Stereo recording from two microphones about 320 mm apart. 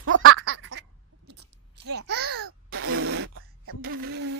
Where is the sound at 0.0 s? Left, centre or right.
Right.